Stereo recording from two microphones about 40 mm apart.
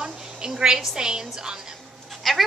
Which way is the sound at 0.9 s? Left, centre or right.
Centre.